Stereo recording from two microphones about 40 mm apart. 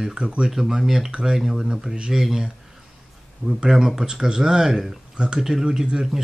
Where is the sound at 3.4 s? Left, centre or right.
Left.